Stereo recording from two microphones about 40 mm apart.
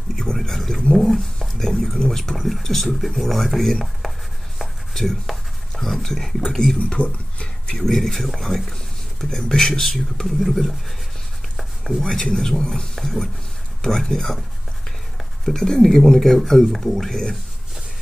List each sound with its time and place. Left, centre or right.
0.1 s speech: centre
7.0 s speech: left
7.6 s speech: centre
7.9 s speech: centre
11.5 s a sound: centre
12.0 s speech: centre
12.9 s speech: centre
15.4 s speech: centre